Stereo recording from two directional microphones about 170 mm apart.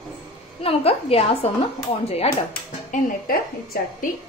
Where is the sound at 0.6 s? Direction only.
35° left (ahead or behind).